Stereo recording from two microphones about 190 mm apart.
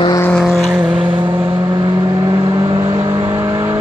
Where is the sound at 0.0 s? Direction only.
20° left (ahead or behind).